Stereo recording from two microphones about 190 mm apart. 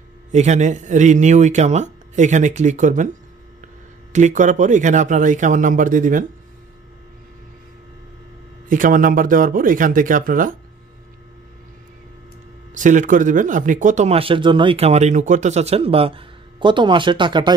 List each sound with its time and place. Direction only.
0.3 s speech: 40° right (ahead or behind)
4.1 s speech: 40° right (ahead or behind)
8.6 s speech: 45° right (ahead or behind)
12.7 s speech: 40° right (ahead or behind); by 17.6 s 25° right (ahead or behind)